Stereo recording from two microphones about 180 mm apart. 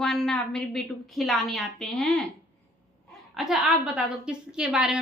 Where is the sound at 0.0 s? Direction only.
5° left (ahead or behind).